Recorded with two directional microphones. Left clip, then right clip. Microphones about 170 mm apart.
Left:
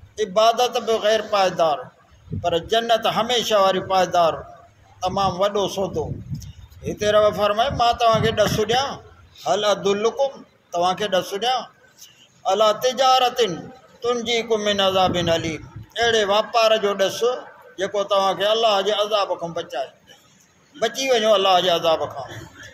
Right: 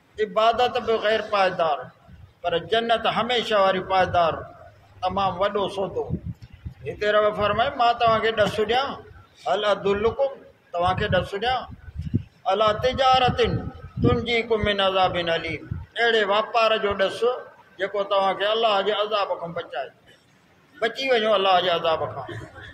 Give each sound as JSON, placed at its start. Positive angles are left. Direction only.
{"t": 0.1, "sound": "a man's voice", "side_deg": 45}